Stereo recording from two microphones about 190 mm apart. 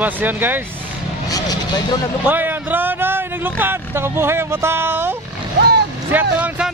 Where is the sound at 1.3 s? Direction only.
20° left (ahead or behind).